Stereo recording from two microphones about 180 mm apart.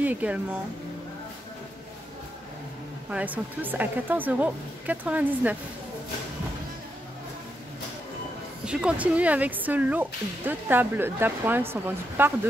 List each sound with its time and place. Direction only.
0.0 s speech: 10° right (ahead or behind)
3.1 s speech: 10° right (ahead or behind)
8.6 s speech: 5° right (ahead or behind)